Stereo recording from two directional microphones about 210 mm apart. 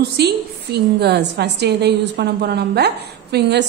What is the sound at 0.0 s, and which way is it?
A woman's voice, 50° right (ahead or behind).